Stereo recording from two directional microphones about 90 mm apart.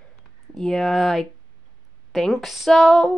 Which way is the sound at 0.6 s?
Centre (ahead or behind).